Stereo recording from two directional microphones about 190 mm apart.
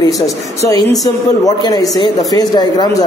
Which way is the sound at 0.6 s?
15° left (ahead or behind).